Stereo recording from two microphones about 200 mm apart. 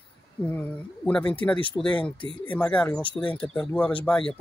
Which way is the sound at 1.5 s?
25° left (ahead or behind).